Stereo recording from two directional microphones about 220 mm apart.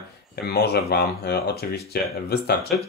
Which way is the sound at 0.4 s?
45° left (ahead or behind).